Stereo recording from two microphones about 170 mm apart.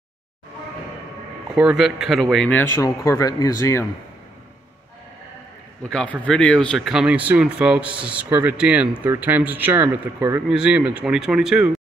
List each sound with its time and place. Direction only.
1.5 s speech: 5° right (ahead or behind)
2.8 s speech: 20° left (ahead or behind)
5.8 s speech: 5° left (ahead or behind)